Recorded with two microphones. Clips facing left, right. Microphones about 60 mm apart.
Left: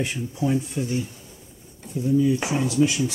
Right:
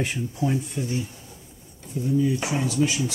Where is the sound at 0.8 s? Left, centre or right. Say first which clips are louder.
Left 2 dB; left.